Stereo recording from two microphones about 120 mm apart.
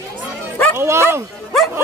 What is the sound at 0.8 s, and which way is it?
Speech, 20° right (ahead or behind).